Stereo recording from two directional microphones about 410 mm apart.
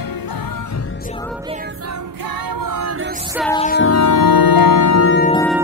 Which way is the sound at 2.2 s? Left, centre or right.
Right.